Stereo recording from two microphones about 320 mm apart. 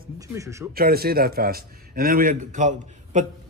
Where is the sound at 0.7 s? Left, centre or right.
Right.